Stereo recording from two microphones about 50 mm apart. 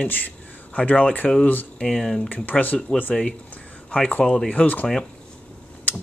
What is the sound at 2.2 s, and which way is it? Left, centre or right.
Speech, left.